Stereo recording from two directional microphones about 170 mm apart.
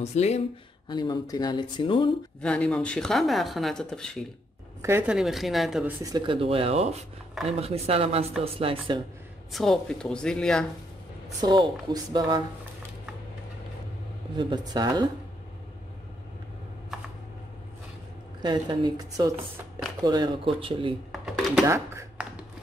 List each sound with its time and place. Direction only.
0.0 s speech: 40° left (ahead or behind)
0.8 s speech: 25° left (ahead or behind)
2.4 s speech: 5° left (ahead or behind)
4.8 s speech: 15° right (ahead or behind)
5.1 s speech: centre (ahead or behind)
6.0 s speech: 25° right (ahead or behind)
9.5 s speech: centre (ahead or behind)
11.4 s speech: 25° right (ahead or behind)
14.3 s speech: 25° right (ahead or behind)
18.4 s speech: 25° right (ahead or behind)
21.6 s speech: 15° right (ahead or behind)